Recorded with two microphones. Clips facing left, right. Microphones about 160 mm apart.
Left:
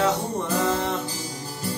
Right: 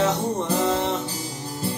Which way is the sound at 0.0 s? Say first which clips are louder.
Right 1 dB; 20° right (ahead or behind).